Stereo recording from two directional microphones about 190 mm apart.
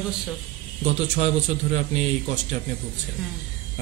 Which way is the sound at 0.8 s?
35° right (ahead or behind).